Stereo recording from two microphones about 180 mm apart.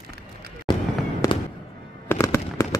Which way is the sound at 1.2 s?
15° left (ahead or behind).